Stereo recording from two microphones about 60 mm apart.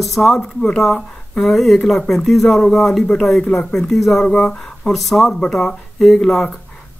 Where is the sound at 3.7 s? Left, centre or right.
Centre.